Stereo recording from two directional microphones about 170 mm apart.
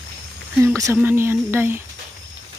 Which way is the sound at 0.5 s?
15° right (ahead or behind).